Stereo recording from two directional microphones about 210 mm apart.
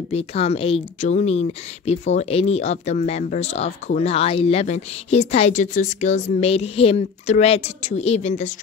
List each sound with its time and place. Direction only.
0.1 s speech: 30° left (ahead or behind)